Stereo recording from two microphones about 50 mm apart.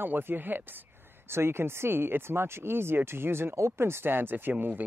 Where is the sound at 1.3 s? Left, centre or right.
Right.